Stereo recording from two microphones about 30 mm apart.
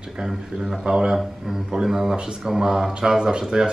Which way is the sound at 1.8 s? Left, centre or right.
Centre.